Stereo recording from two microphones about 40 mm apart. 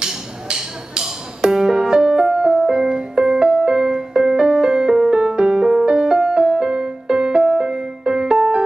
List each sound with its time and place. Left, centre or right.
0.0 s music: centre